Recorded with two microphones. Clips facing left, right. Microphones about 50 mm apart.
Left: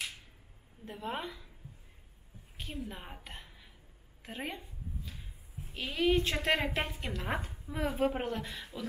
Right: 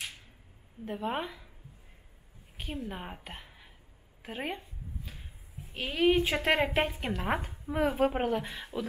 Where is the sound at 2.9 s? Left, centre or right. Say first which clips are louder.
Right 5 dB; centre.